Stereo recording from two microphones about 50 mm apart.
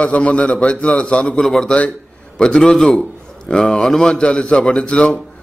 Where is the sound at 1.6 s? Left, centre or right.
Left.